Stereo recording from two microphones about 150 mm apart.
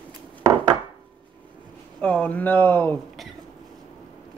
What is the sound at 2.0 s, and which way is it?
Speech, 10° left (ahead or behind).